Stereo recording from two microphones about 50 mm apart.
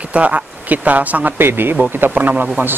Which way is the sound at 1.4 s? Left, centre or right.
Right.